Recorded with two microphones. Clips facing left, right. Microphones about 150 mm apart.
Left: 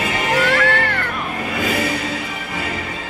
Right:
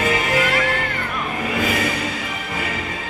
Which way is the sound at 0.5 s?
80° left.